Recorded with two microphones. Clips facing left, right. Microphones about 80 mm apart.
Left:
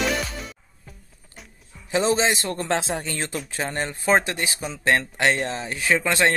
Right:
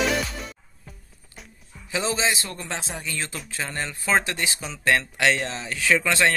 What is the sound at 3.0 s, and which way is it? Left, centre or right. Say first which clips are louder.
Speech: left 3 dB; left.